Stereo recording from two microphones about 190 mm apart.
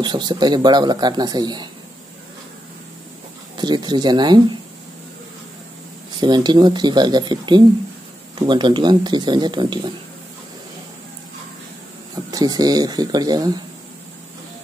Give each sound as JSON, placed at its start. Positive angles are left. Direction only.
{"t": 0.0, "sound": "speech", "side_deg": -25}
{"t": 3.5, "sound": "speech", "side_deg": -20}
{"t": 6.2, "sound": "speech", "side_deg": -25}
{"t": 12.3, "sound": "speech", "side_deg": -20}